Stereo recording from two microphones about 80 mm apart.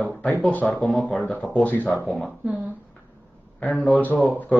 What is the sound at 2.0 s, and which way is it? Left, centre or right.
Speech, centre.